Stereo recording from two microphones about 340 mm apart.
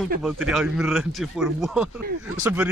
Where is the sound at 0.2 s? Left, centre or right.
Centre.